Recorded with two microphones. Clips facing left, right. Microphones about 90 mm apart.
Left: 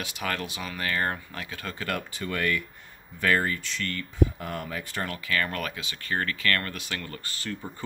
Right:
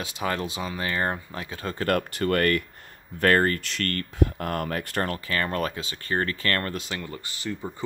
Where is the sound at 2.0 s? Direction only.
60° right (ahead or behind); by 7.0 s 30° right (ahead or behind).